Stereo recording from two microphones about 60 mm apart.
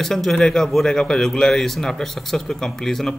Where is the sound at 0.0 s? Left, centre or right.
Centre.